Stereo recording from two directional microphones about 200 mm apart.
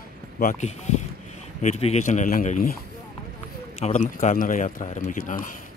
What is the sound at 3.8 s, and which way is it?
A man's voice, 35° left (ahead or behind).